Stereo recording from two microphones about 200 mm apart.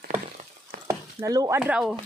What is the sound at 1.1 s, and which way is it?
Speech, 15° right (ahead or behind).